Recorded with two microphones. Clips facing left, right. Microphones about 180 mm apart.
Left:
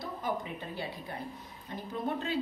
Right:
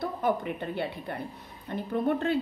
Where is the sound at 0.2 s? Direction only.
60° right (ahead or behind).